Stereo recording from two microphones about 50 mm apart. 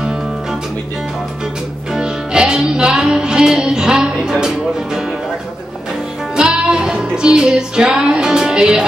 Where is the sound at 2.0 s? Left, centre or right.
Centre.